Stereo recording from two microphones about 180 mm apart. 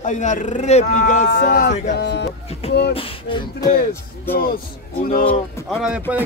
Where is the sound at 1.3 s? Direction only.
55° left (ahead or behind).